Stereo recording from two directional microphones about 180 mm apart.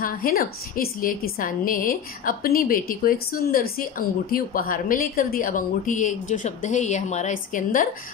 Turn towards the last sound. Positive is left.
turn(degrees=45)  # may be behind; listen again after turning